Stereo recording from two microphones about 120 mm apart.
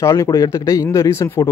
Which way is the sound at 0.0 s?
30° left (ahead or behind).